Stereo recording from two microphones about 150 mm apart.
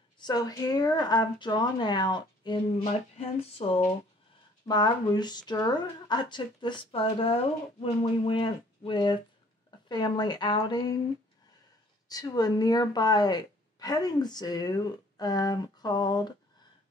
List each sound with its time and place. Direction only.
0.2 s a woman's voice: 25° left (ahead or behind); by 3.8 s 40° left (ahead or behind)
4.6 s a woman's voice: 30° left (ahead or behind)
12.1 s a woman's voice: 25° left (ahead or behind)